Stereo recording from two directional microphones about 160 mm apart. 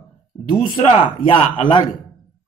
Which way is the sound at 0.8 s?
35° left (ahead or behind).